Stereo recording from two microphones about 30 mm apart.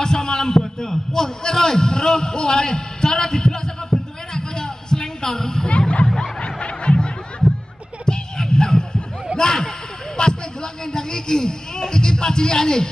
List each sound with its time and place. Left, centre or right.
0.0 s heart sounds: centre
5.7 s music: left
6.0 s snicker: centre
6.4 s snicker: left
8.0 s music: left
9.4 s a sound: left
11.9 s speech: left